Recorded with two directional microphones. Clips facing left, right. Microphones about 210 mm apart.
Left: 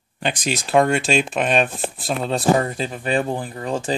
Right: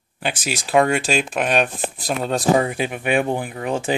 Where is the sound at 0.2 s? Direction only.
5° right (ahead or behind).